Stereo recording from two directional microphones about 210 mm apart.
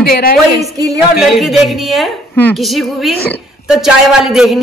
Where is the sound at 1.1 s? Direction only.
Centre (ahead or behind).